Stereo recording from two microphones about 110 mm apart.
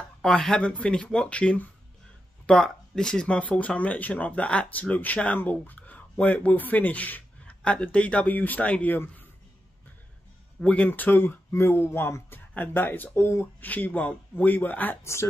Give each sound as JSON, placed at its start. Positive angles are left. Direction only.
{"t": 0.2, "sound": "speech", "side_deg": 5}
{"t": 10.6, "sound": "speech", "side_deg": 10}